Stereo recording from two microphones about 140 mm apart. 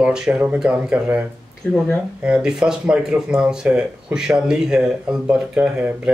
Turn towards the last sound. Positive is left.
turn(degrees=-10)  # may be behind; listen again after turning